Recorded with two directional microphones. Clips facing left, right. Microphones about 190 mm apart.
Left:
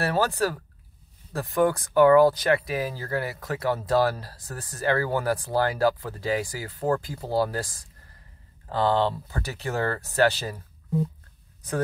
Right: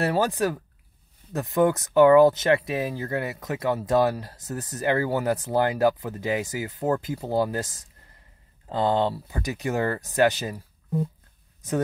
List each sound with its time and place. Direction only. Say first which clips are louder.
0.0 s speech: right 1 dB; 20° right (ahead or behind)